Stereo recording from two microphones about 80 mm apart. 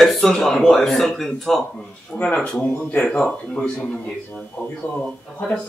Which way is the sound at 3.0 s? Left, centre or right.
Centre.